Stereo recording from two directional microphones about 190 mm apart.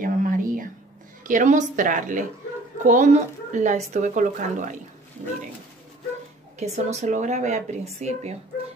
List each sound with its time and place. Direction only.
0.0 s a sound: 45° right (ahead or behind)
1.2 s speech: 40° right (ahead or behind)
6.6 s speech: 35° right (ahead or behind)